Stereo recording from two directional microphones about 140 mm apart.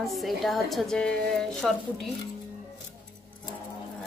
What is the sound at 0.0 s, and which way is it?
A woman's voice, centre (ahead or behind).